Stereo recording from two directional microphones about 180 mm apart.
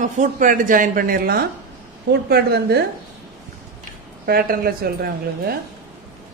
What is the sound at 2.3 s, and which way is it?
Speech, 65° right (ahead or behind).